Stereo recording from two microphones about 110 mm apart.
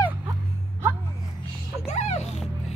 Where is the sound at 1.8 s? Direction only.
75° left (ahead or behind).